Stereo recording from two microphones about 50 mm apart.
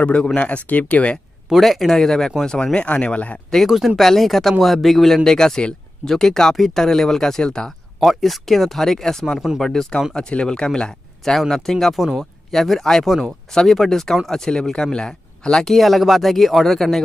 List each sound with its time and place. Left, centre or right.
0.0 s speech: left
1.5 s speech: centre; by 3.3 s left
3.5 s speech: centre
8.0 s speech: centre
15.7 s speech: centre